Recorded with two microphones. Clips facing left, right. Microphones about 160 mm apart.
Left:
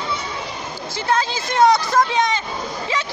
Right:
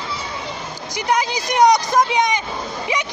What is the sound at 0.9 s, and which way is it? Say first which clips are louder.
Speech: right 1 dB; 15° right (ahead or behind).